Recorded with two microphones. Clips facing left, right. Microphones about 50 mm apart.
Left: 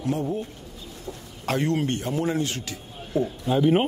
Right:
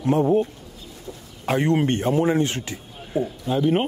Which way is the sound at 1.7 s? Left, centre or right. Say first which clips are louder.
Right 5 dB; right.